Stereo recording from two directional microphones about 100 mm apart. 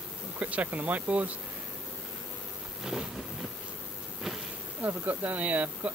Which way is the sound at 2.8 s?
5° right (ahead or behind).